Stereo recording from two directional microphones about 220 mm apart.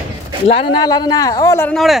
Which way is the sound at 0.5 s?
25° left (ahead or behind).